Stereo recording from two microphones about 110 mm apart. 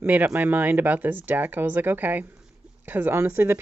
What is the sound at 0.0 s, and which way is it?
Speech, 15° right (ahead or behind).